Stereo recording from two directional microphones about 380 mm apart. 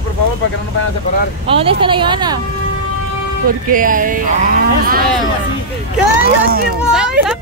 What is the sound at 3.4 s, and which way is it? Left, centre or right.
Speech, right.